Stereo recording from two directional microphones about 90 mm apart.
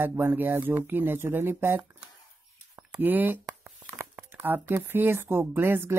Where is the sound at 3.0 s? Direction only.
20° right (ahead or behind).